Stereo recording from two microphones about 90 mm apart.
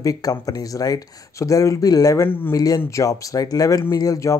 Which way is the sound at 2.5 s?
40° left (ahead or behind).